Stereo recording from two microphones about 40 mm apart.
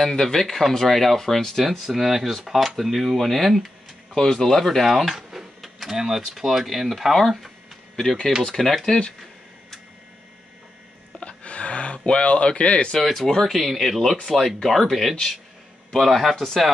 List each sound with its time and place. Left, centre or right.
0.0 s speech: centre
1.8 s speech: centre
4.1 s speech: centre
5.6 s power windows: centre
5.9 s speech: centre
11.1 s a sound: left
12.9 s speech: centre
14.6 s speech: centre